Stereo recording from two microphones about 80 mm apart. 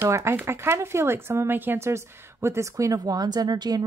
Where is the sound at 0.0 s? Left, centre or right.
Right.